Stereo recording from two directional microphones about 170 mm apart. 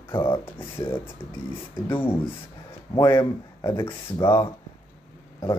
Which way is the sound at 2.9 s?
20° left (ahead or behind).